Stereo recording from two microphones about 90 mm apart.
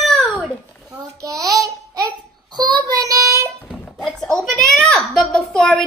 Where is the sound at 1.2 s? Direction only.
40° right (ahead or behind).